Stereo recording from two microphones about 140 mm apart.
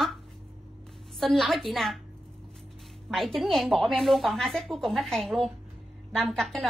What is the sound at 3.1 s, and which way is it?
Speech, centre (ahead or behind).